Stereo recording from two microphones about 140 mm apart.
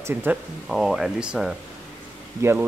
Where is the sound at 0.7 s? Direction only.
Centre (ahead or behind).